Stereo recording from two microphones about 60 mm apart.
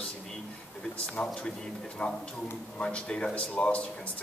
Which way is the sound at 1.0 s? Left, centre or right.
Centre.